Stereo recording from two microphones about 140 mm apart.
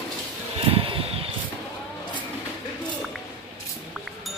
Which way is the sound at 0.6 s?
40° right (ahead or behind).